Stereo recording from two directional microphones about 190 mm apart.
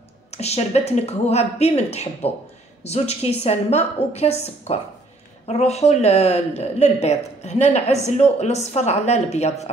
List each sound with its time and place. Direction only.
0.3 s speech: 35° left (ahead or behind)